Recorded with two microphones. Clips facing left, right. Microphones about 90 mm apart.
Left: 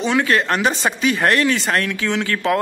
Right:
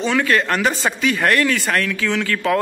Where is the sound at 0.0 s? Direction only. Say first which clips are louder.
Even; 20° left (ahead or behind).